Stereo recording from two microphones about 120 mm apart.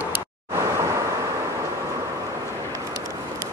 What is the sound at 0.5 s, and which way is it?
Vehicle, 25° right (ahead or behind).